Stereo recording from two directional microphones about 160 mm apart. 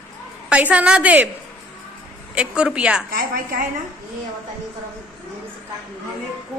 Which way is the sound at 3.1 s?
70° right (ahead or behind).